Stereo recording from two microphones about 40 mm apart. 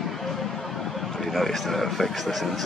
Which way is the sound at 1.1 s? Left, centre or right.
Centre.